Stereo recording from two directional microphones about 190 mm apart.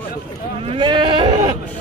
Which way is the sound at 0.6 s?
25° right (ahead or behind).